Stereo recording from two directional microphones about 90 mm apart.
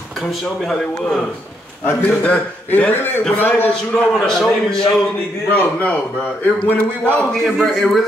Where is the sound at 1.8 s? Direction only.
25° left (ahead or behind).